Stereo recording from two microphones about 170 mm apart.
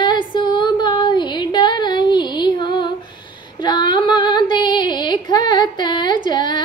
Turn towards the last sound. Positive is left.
turn(degrees=25)  # may be behind; listen again after turning